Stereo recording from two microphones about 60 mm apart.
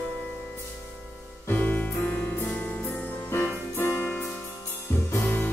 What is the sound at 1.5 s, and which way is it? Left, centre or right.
Music, left.